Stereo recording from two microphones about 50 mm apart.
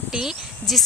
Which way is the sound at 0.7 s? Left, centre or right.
Centre.